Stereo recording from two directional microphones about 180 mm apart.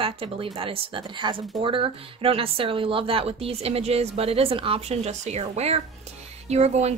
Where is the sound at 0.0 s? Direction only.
30° right (ahead or behind).